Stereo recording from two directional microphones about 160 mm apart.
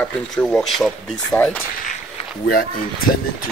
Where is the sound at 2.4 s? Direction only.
70° left (ahead or behind).